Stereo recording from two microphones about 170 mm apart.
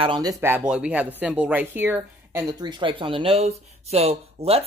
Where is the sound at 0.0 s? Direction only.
25° right (ahead or behind).